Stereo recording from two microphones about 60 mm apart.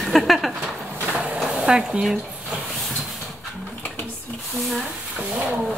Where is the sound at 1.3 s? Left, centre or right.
Centre.